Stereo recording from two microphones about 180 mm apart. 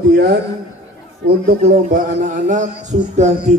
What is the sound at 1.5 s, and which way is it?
Speech, 45° right (ahead or behind).